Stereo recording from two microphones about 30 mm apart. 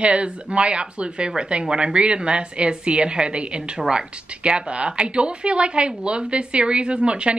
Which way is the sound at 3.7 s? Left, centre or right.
Right.